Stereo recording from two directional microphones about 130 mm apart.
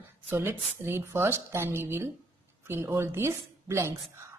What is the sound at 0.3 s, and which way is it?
A woman's voice, 15° right (ahead or behind).